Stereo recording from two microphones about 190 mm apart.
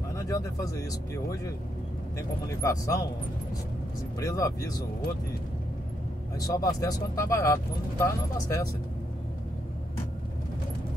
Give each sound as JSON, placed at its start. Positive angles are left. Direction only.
{"t": 0.1, "sound": "speech", "side_deg": 15}
{"t": 4.2, "sound": "speech", "side_deg": 15}
{"t": 6.3, "sound": "speech", "side_deg": 20}